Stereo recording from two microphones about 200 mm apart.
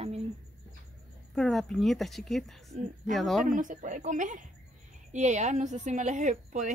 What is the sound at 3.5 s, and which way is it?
Speech, 40° right (ahead or behind).